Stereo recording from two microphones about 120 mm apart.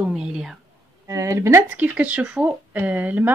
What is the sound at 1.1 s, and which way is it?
Speech, 25° right (ahead or behind).